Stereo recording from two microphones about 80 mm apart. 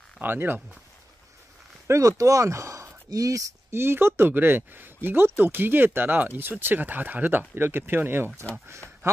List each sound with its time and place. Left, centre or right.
0.2 s speech: right
1.9 s a man's voice: right